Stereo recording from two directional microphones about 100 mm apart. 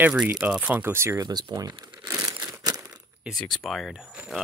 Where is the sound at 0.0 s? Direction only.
15° right (ahead or behind).